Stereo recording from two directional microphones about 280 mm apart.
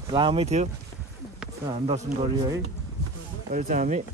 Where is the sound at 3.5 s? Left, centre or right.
Right.